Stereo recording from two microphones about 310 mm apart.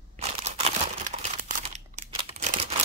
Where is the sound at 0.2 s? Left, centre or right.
Centre.